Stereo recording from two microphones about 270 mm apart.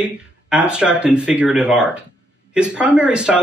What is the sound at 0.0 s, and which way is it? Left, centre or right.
Speech, centre.